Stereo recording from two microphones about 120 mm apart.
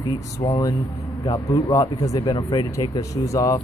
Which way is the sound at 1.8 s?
30° left (ahead or behind).